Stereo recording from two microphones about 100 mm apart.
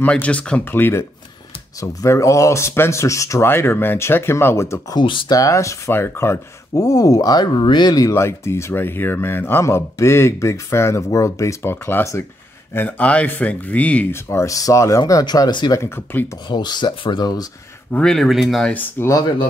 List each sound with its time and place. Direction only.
0.0 s speech: 15° left (ahead or behind)
1.8 s speech: 30° left (ahead or behind)
4.9 s speech: 55° left (ahead or behind)
5.3 s speech: 35° left (ahead or behind)
6.7 s speech: 35° left (ahead or behind)
8.1 s speech: 25° left (ahead or behind)
14.1 s speech: 30° left (ahead or behind); by 15.7 s 45° left (ahead or behind)
15.7 s speech: 25° left (ahead or behind)
16.4 s speech: 45° left (ahead or behind)
17.9 s speech: 5° left (ahead or behind)
18.7 s speech: 20° left (ahead or behind)